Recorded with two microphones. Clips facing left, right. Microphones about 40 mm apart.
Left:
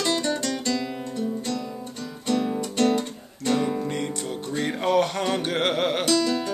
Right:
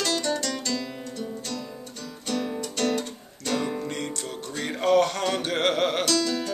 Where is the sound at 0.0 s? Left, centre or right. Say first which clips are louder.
Left 2 dB; left.